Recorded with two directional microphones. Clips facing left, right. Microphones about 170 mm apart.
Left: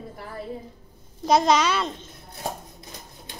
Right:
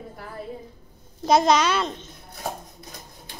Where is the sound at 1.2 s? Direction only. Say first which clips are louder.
Right 1 dB; centre (ahead or behind).